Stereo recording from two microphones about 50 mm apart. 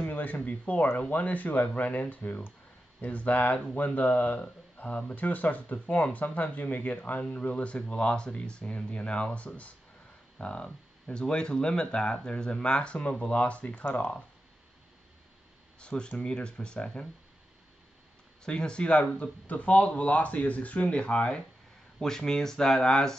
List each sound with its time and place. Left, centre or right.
0.0 s speech: left
15.8 s speech: left
18.4 s speech: centre